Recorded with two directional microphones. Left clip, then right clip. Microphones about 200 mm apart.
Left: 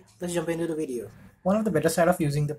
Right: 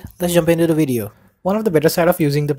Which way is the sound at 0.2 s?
45° right (ahead or behind).